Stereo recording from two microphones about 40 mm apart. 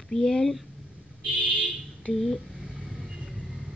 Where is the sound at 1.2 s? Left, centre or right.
Right.